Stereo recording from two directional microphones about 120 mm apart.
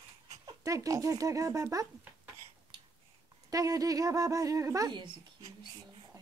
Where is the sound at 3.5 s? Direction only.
30° right (ahead or behind).